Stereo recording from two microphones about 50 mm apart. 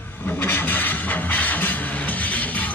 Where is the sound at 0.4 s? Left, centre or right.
Left.